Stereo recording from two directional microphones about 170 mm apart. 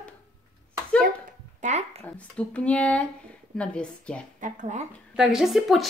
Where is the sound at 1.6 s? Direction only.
40° right (ahead or behind).